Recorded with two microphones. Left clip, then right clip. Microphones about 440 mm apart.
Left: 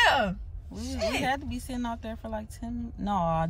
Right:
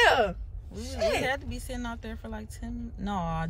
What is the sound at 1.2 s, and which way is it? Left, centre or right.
Speech, centre.